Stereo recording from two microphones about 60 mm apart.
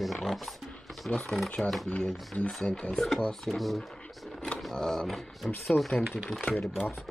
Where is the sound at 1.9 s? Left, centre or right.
Centre.